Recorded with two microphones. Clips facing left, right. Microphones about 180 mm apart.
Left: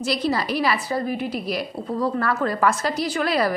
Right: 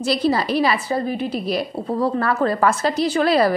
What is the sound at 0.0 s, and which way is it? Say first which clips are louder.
A woman's voice: right 4 dB; 30° right (ahead or behind).